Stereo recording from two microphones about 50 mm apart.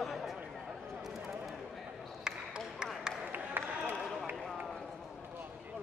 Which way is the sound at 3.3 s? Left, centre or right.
Right.